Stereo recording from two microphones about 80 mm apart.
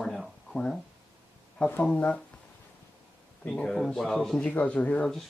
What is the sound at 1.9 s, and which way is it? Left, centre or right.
Speech, centre.